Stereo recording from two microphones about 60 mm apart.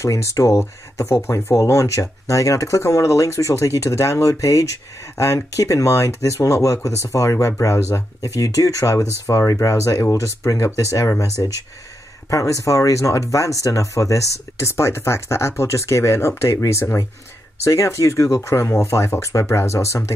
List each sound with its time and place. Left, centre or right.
0.0 s speech: left
10.1 s speech: left
14.6 s speech: left